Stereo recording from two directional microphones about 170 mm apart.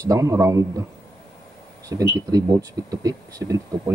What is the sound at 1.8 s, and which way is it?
Speech, 20° right (ahead or behind).